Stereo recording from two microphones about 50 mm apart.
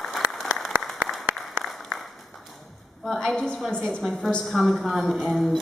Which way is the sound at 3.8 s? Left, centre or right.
Centre.